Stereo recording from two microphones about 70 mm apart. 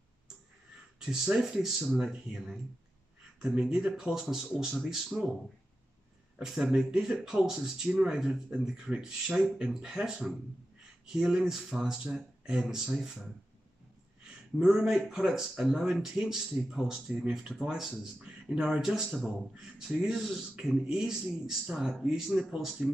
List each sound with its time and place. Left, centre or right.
0.9 s speech: centre
3.3 s speech: centre
6.4 s speech: centre
14.6 s speech: centre